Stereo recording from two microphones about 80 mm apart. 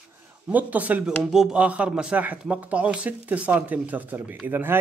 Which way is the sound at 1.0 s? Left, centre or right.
Centre.